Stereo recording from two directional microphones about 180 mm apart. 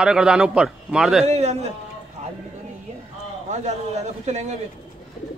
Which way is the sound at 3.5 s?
40° right (ahead or behind).